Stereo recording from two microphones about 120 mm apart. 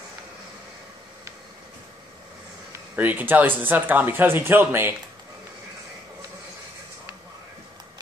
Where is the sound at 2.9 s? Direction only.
15° right (ahead or behind).